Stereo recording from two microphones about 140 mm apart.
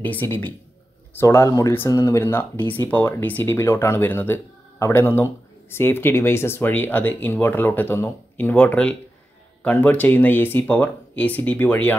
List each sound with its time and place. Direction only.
0.0 s speech: 15° left (ahead or behind)